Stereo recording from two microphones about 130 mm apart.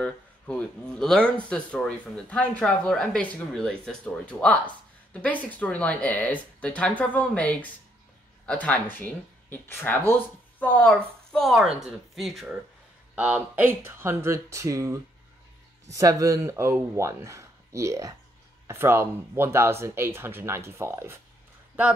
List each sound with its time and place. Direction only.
0.0 s speech: 5° left (ahead or behind)
13.1 s speech: 10° right (ahead or behind)